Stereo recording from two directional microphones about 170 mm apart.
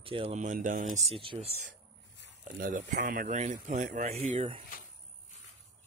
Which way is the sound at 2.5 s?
50° right (ahead or behind).